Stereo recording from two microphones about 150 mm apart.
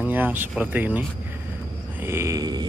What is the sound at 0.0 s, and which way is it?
Speech, 10° right (ahead or behind).